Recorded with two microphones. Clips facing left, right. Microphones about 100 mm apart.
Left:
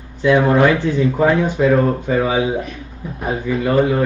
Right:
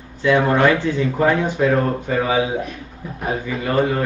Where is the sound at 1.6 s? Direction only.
Centre (ahead or behind).